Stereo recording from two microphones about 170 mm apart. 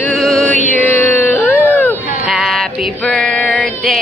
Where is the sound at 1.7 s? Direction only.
10° left (ahead or behind).